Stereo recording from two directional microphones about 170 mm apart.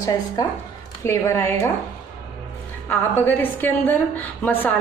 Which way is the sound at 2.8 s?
10° left (ahead or behind).